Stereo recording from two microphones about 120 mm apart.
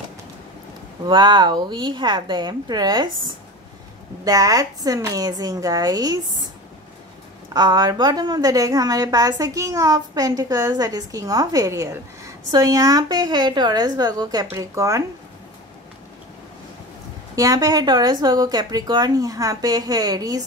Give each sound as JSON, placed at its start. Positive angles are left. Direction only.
{"t": 1.0, "sound": "a woman's voice", "side_deg": -40}
{"t": 4.2, "sound": "a woman's voice", "side_deg": -30}
{"t": 7.5, "sound": "a woman's voice", "side_deg": -35}
{"t": 17.4, "sound": "a woman's voice", "side_deg": -30}